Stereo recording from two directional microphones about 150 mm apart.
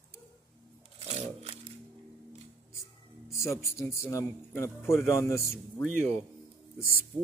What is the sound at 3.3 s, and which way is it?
A man's voice, 20° left (ahead or behind).